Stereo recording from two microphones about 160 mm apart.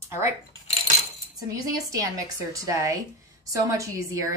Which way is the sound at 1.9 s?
20° right (ahead or behind).